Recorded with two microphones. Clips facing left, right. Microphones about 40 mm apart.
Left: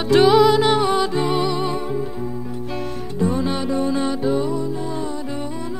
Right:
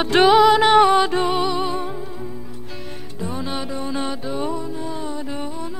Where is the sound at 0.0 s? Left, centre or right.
Right.